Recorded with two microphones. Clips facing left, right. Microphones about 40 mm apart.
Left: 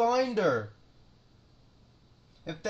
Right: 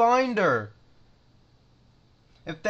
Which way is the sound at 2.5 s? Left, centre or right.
Right.